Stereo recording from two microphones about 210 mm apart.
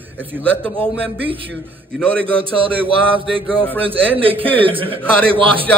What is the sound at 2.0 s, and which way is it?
Speech, 5° left (ahead or behind).